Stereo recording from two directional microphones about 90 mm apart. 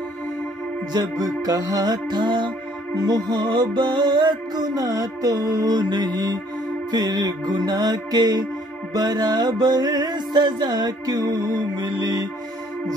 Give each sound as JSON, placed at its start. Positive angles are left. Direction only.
{"t": 0.9, "sound": "music", "side_deg": -45}